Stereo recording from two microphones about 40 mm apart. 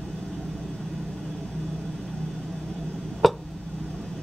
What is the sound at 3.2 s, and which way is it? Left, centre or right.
Tick, centre.